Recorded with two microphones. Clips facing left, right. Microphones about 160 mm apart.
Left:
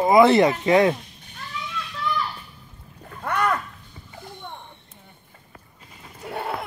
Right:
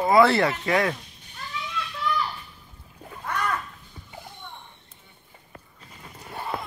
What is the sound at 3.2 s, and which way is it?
Splash, 60° left (ahead or behind).